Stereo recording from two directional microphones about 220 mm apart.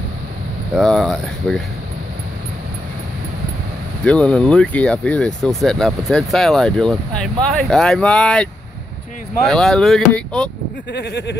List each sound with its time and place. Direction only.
0.7 s speech: centre (ahead or behind)
4.0 s speech: 5° left (ahead or behind)
10.9 s speech: 50° left (ahead or behind)